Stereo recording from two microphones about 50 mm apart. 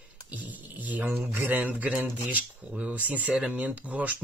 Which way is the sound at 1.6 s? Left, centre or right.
Right.